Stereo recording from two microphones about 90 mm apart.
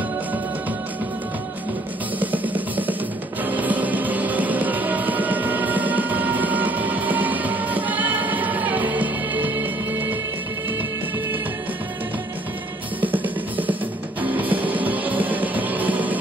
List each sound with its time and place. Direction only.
2.1 s music: 20° right (ahead or behind)
13.0 s music: 20° right (ahead or behind)